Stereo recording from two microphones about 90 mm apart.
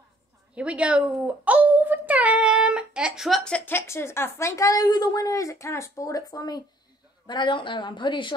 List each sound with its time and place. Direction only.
0.6 s a woman's voice: 15° right (ahead or behind)
1.2 s child singing: 15° right (ahead or behind); by 3.5 s centre (ahead or behind)
3.5 s a woman's voice: 25° left (ahead or behind); by 6.6 s 45° left (ahead or behind)
7.2 s a woman's voice: 60° left (ahead or behind)